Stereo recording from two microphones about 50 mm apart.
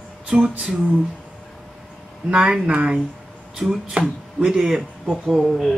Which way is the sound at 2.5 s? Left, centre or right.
Right.